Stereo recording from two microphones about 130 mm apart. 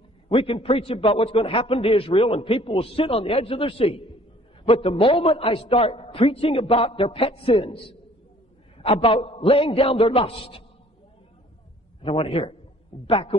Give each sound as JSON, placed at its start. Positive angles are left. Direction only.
{"t": 0.3, "sound": "a man's voice", "side_deg": 45}
{"t": 12.0, "sound": "a man's voice", "side_deg": 45}